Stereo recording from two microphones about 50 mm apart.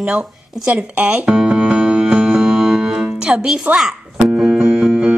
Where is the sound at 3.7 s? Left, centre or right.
Right.